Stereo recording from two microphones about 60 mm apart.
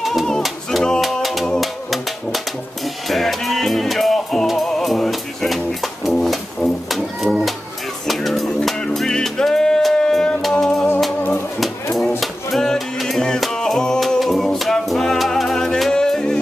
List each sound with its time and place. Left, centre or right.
0.0 s singing: centre
1.1 s music: centre
11.6 s a sound: centre
12.2 s music: centre